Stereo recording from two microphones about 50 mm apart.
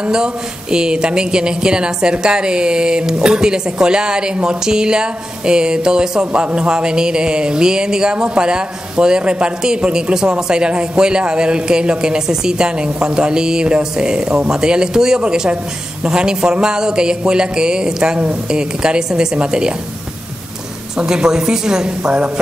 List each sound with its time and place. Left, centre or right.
0.0 s speech: centre
20.9 s speech: centre